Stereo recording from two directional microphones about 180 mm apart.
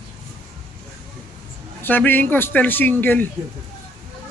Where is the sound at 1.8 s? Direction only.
10° left (ahead or behind).